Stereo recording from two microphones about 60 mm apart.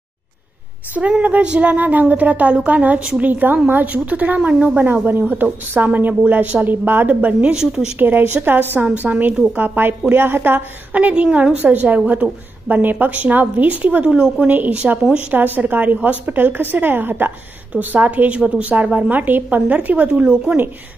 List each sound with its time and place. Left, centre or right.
1.1 s a woman's voice: right
7.5 s speech: centre
8.0 s a woman's voice: right; by 15.0 s centre
15.3 s a woman's voice: right